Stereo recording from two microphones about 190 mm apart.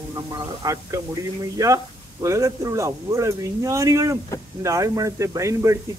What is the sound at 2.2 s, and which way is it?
Speech, 15° right (ahead or behind).